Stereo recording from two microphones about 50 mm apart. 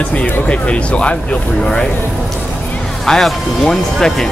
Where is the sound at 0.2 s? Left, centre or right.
Left.